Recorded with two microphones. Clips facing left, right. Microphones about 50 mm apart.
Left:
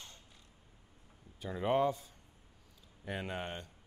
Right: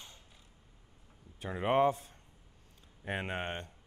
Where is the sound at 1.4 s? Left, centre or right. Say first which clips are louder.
Right 3 dB; right.